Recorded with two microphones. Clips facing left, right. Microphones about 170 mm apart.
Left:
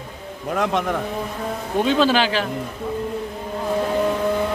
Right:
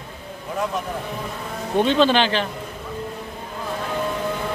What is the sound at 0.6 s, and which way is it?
Speech, 80° left.